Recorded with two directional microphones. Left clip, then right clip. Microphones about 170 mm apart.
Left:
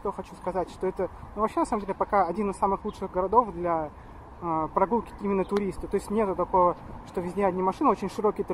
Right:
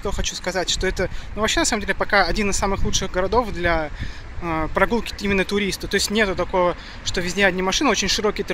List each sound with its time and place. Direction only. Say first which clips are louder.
0.2 s speech: right 6 dB; 20° right (ahead or behind)